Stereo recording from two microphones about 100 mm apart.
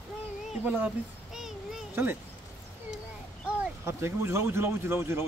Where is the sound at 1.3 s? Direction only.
5° right (ahead or behind).